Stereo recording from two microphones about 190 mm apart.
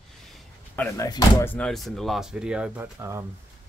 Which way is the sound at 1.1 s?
20° left (ahead or behind).